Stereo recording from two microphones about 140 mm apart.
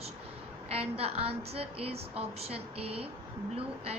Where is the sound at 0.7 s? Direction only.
45° right (ahead or behind).